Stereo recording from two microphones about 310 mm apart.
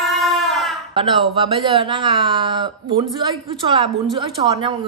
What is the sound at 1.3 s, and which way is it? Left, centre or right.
Speech, centre.